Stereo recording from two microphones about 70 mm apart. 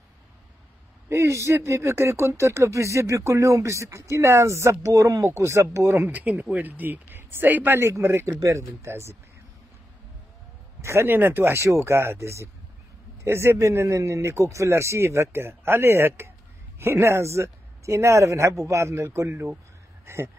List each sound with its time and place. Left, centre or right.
1.0 s speech: right
6.0 s speech: right
10.8 s speech: right
20.1 s a sound: right